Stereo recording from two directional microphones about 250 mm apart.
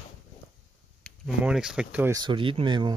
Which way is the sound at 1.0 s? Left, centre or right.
Centre.